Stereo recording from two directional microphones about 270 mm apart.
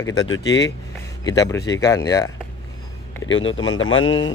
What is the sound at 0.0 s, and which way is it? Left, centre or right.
Speech, centre.